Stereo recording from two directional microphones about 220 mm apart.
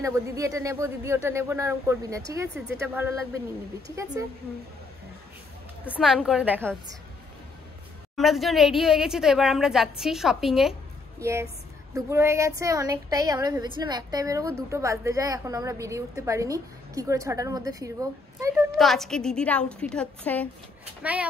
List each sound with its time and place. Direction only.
0.0 s speech: 15° right (ahead or behind)
5.9 s a woman's voice: 5° right (ahead or behind)
8.2 s a woman's voice: centre (ahead or behind)
11.1 s a woman's voice: 10° right (ahead or behind)
18.8 s a woman's voice: centre (ahead or behind)
21.0 s speech: 5° right (ahead or behind)